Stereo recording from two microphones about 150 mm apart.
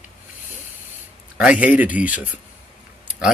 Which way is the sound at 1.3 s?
5° right (ahead or behind).